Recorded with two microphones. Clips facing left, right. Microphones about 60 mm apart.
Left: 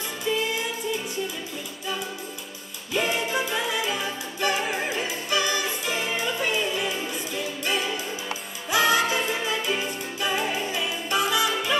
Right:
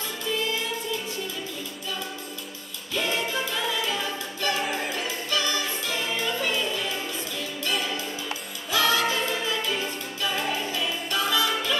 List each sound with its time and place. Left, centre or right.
0.3 s music: left
2.9 s music: left
8.6 s music: centre